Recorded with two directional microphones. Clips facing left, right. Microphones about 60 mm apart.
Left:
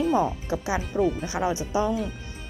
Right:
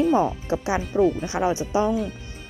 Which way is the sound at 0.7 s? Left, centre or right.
Centre.